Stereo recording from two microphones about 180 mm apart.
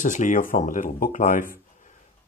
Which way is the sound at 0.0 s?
45° left (ahead or behind).